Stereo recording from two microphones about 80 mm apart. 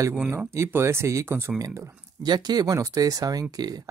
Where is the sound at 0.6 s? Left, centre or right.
Right.